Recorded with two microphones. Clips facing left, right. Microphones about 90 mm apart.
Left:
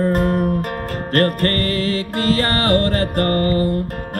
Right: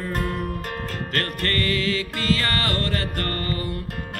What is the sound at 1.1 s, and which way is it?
Music, 40° left (ahead or behind).